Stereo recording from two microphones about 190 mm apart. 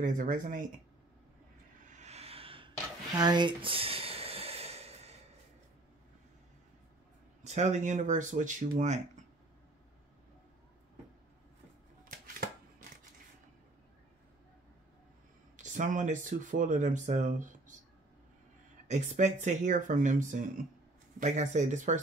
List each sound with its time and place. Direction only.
0.0 s speech: 45° right (ahead or behind)
1.9 s a sound: 35° right (ahead or behind)
7.4 s speech: 40° right (ahead or behind)
12.0 s a sound: 45° right (ahead or behind)
15.5 s speech: 40° right (ahead or behind)
18.9 s speech: 40° right (ahead or behind)